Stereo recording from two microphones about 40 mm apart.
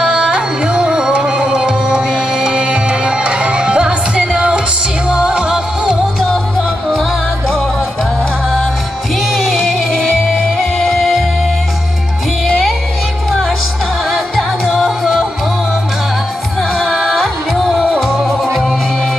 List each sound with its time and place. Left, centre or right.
0.1 s music: right
9.3 s music: centre
12.4 s music: centre
14.1 s music: centre
16.7 s music: centre